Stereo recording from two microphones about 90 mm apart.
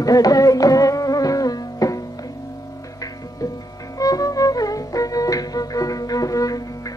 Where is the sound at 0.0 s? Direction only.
40° left (ahead or behind).